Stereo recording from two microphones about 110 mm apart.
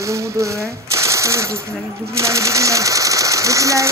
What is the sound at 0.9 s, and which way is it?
Machine gun, 25° right (ahead or behind).